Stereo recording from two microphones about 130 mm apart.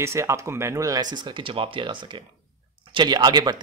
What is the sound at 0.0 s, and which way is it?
Speech, 20° right (ahead or behind).